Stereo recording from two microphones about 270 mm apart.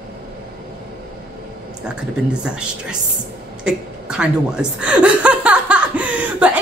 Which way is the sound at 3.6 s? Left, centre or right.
Centre.